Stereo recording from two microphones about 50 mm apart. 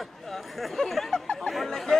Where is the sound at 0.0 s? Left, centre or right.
Centre.